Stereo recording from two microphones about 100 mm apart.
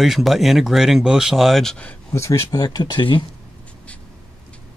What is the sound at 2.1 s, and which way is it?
Speech, 30° left (ahead or behind).